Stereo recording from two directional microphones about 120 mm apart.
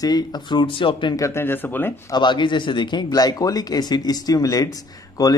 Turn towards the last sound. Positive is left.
turn(degrees=30)  # may be behind; listen again after turning